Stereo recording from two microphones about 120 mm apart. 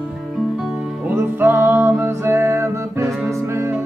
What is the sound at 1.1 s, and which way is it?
Music, 15° right (ahead or behind).